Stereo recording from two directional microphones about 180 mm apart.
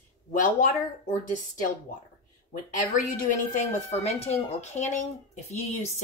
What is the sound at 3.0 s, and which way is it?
Speech, 45° left (ahead or behind).